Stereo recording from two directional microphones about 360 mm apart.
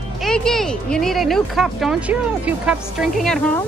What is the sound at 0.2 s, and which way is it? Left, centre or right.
Speech, centre.